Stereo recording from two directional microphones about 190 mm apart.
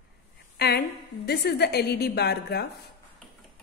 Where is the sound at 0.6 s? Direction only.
60° left (ahead or behind).